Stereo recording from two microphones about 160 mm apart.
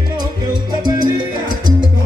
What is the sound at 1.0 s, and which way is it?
Salsa music, 25° right (ahead or behind).